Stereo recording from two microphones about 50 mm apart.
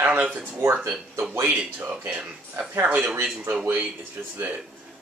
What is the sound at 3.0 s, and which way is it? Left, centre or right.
Speech, right.